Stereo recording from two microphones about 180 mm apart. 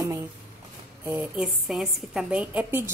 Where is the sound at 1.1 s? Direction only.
5° right (ahead or behind).